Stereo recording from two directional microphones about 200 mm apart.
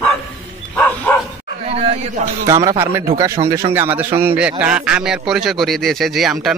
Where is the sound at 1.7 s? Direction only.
30° right (ahead or behind).